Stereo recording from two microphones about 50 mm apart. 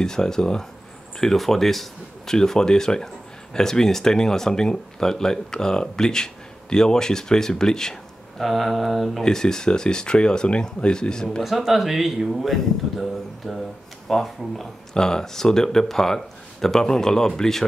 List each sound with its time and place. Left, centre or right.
0.0 s speech: centre
8.5 s speech: centre
9.2 s speech: centre
11.4 s speech: centre
15.0 s speech: centre